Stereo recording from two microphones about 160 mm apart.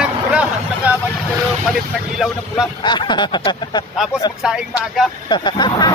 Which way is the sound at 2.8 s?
30° left (ahead or behind).